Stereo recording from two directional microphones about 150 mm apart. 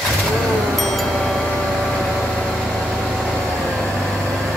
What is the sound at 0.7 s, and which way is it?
Wind chime, centre (ahead or behind).